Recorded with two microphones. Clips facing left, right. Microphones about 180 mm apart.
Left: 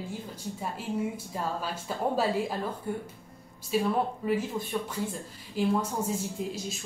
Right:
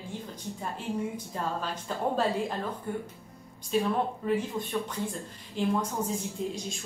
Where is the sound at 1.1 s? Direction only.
5° left (ahead or behind).